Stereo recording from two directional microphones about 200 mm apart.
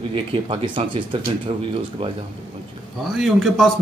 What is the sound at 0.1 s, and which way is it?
Speech, 25° right (ahead or behind).